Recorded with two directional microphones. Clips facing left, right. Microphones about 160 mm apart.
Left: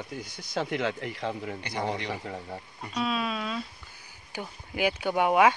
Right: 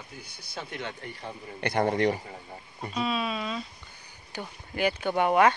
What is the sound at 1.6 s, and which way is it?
Speech, 55° right (ahead or behind).